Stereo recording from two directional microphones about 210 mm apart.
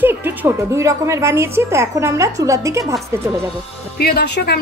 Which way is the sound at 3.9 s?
50° left (ahead or behind).